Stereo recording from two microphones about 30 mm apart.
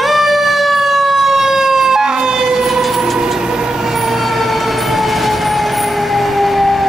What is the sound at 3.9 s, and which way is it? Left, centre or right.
Fire engine, centre.